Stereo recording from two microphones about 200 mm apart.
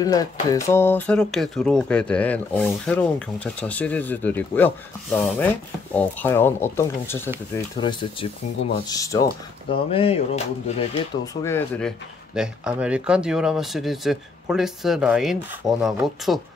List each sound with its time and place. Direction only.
0.0 s speech: 20° left (ahead or behind)
9.8 s speech: 30° left (ahead or behind)
11.4 s speech: 10° left (ahead or behind)
12.4 s speech: 5° right (ahead or behind)